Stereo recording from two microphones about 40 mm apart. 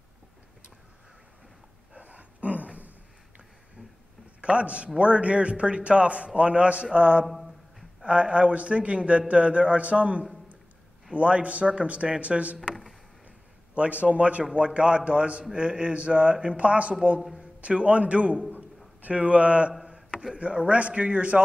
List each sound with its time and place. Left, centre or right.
2.0 s dog: right
4.4 s a man's voice: right
7.2 s a sound: centre
8.0 s a man's voice: right
13.7 s a man's voice: right
19.9 s a sound: right
20.3 s a man's voice: right